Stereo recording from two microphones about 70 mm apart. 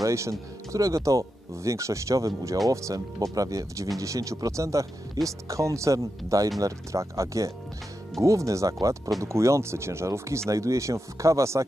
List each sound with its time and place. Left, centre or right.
0.0 s speech: right
9.2 s speech: right